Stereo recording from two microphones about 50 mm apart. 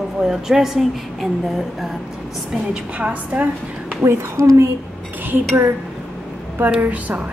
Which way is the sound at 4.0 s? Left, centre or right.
Right.